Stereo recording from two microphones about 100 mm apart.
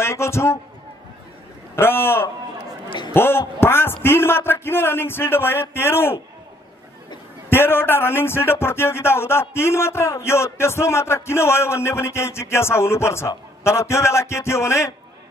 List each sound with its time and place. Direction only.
0.0 s speech: 25° left (ahead or behind)
1.8 s speech: 20° left (ahead or behind)
7.4 s speech: 25° left (ahead or behind)